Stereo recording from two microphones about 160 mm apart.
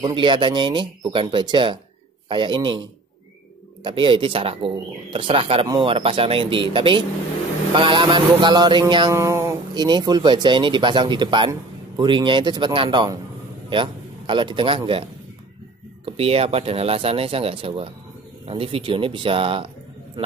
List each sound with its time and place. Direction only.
0.0 s speech: 30° right (ahead or behind)
3.8 s speech: 30° right (ahead or behind)
7.7 s a sound: 30° right (ahead or behind)
9.8 s a sound: 25° right (ahead or behind)
13.7 s a man's voice: 30° right (ahead or behind)
16.2 s speech: 40° right (ahead or behind)